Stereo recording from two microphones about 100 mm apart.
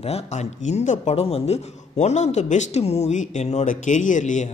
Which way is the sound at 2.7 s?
90° left.